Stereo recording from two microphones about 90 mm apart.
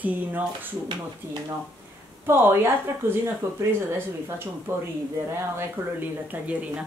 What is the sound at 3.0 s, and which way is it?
Speech, 25° right (ahead or behind).